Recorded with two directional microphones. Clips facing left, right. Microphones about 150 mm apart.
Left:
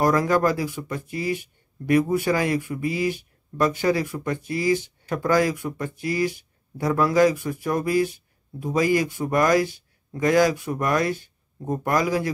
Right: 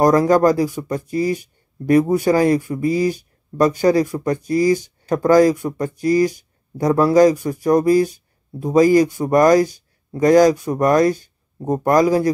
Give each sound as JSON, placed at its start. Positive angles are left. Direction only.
{"t": 0.0, "sound": "speech", "side_deg": -40}